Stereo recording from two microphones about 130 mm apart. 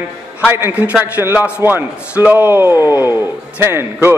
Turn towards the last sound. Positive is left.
turn(degrees=-20)  # may be behind; listen again after turning